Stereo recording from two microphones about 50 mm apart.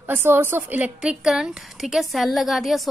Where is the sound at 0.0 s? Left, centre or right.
Right.